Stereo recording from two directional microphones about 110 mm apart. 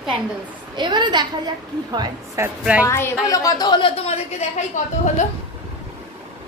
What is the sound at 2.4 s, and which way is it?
Speech, 25° right (ahead or behind).